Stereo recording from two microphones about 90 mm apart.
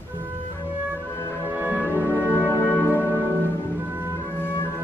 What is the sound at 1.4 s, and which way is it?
Music, 20° right (ahead or behind).